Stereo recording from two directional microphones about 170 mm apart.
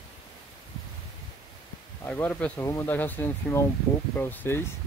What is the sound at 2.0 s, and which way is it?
Speech, 10° left (ahead or behind).